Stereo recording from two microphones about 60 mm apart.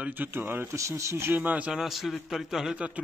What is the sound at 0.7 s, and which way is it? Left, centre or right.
Speech, right.